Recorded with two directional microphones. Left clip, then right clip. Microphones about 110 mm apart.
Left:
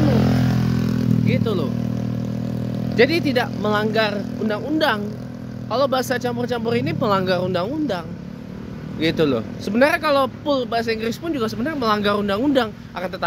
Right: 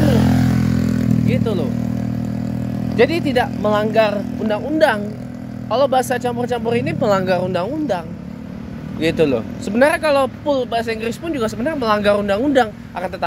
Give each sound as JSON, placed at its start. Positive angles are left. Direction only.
{"t": 0.4, "sound": "vehicle", "side_deg": 0}
{"t": 1.2, "sound": "vehicle", "side_deg": 25}
{"t": 3.0, "sound": "speech", "side_deg": 35}
{"t": 7.0, "sound": "speech", "side_deg": 15}
{"t": 9.0, "sound": "speech", "side_deg": 25}
{"t": 11.3, "sound": "speech", "side_deg": 10}
{"t": 12.2, "sound": "speech", "side_deg": 25}